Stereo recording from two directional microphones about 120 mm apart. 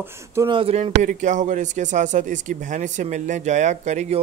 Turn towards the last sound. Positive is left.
turn(degrees=-75)  # may be behind; listen again after turning